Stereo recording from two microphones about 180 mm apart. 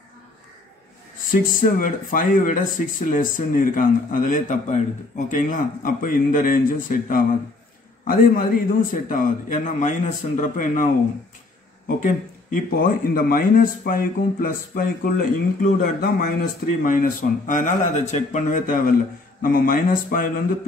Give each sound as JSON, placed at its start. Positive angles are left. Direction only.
{"t": 1.3, "sound": "speech", "side_deg": 50}
{"t": 12.5, "sound": "speech", "side_deg": 55}